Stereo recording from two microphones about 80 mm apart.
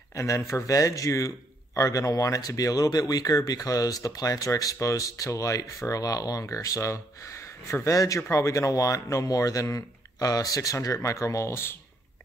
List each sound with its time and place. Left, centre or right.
0.1 s speech: left